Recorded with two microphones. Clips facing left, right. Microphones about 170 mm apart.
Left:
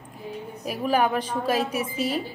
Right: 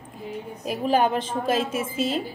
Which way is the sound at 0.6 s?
25° right (ahead or behind).